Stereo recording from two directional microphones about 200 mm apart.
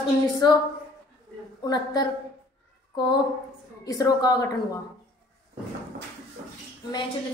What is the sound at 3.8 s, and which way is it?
Speech, 15° left (ahead or behind).